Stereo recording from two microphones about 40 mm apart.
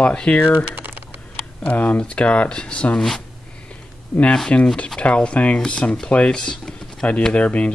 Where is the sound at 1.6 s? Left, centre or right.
Left.